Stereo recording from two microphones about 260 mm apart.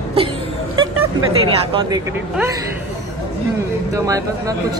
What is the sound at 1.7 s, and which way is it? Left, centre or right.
Speech, centre.